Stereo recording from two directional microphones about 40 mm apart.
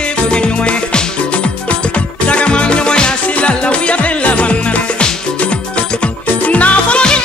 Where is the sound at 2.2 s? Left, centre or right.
Left.